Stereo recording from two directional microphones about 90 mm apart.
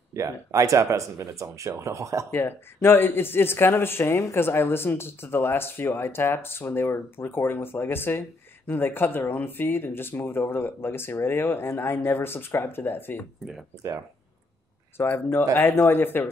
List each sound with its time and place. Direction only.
0.1 s speech: 35° right (ahead or behind)
2.3 s speech: 25° left (ahead or behind)
15.0 s speech: 25° left (ahead or behind)